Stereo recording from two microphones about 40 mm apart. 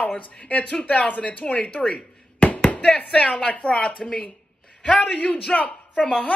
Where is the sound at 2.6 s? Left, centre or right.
Left.